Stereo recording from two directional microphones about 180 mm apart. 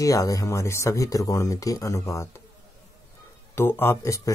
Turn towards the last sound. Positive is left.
turn(degrees=15)  # may be behind; listen again after turning